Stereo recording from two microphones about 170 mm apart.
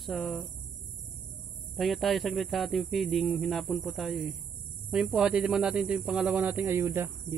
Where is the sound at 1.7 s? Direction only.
Centre (ahead or behind).